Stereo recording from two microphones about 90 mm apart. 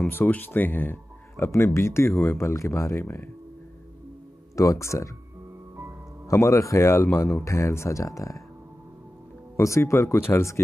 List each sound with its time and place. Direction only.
0.1 s speech: 20° left (ahead or behind)
4.6 s speech: 35° left (ahead or behind)
6.2 s speech: 35° left (ahead or behind)
9.6 s speech: 35° left (ahead or behind)